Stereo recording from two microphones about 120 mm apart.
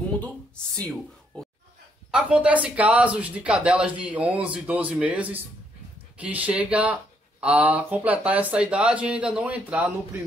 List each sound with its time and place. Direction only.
0.7 s speech: 10° left (ahead or behind)
2.0 s speech: 10° right (ahead or behind)